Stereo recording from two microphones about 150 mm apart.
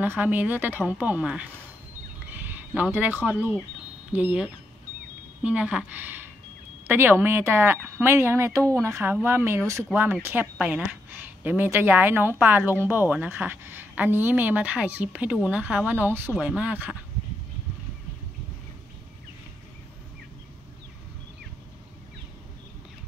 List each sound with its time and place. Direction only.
0.0 s a woman's voice: 15° right (ahead or behind)